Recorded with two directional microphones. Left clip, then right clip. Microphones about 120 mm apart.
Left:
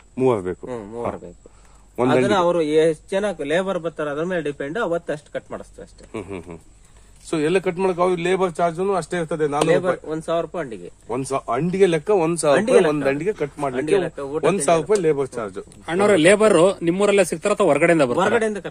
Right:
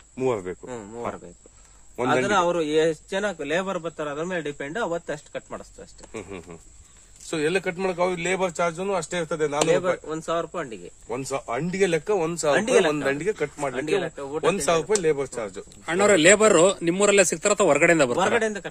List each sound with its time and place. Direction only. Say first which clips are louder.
0.1 s speech: left 6 dB; 85° left
0.7 s a man's voice: left 5 dB; centre (ahead or behind)
7.2 s speech: left 4 dB; 40° left (ahead or behind)
9.7 s speech: left 3 dB; 5° right (ahead or behind)
11.1 s speech: left 5 dB; 40° left (ahead or behind)
12.9 s a man's voice: left 4 dB; 5° left (ahead or behind)
13.8 s speech: left 7 dB; 10° right (ahead or behind)
14.5 s speech: left 4 dB; 30° left (ahead or behind)
15.8 s a man's voice: left 2 dB; 20° right (ahead or behind)
18.2 s speech: left 3 dB; 5° right (ahead or behind)